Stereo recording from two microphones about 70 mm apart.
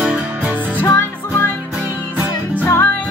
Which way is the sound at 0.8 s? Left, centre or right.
Left.